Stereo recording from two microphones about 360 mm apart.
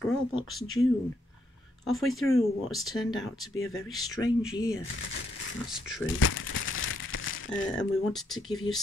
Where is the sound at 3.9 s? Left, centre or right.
Centre.